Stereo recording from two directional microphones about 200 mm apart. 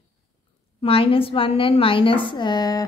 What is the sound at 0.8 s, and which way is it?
A woman's voice, 25° left (ahead or behind).